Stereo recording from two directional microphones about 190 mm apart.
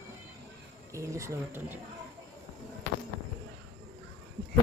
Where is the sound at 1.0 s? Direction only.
15° right (ahead or behind).